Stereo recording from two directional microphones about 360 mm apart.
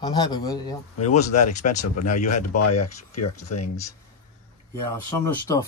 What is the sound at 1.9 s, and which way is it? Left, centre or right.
Speech, left.